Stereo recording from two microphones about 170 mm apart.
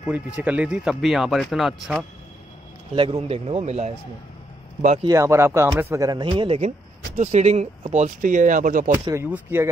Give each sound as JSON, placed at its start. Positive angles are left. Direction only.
{"t": 0.4, "sound": "speech", "side_deg": -10}
{"t": 2.9, "sound": "a man's voice", "side_deg": -35}
{"t": 5.0, "sound": "speech", "side_deg": -15}
{"t": 9.0, "sound": "speech", "side_deg": -15}